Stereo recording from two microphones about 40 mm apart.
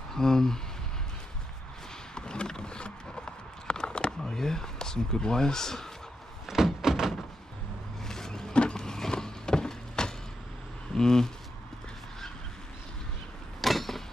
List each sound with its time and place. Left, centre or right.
0.1 s speech: centre
2.1 s a sound: centre
6.4 s door: centre
8.1 s vehicle: centre
11.0 s speech: centre
13.6 s a sound: centre